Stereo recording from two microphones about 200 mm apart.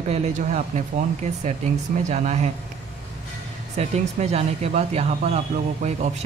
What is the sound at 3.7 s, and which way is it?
Speech, 30° right (ahead or behind).